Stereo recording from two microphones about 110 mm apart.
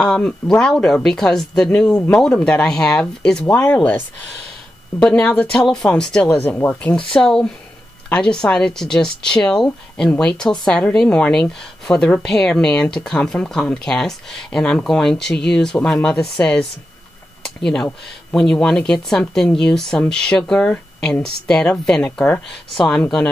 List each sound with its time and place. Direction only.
0.0 s speech: 5° left (ahead or behind)
3.4 s speech: 20° left (ahead or behind)
5.0 s speech: 15° left (ahead or behind)
6.3 s speech: 15° left (ahead or behind)
7.2 s speech: 5° left (ahead or behind)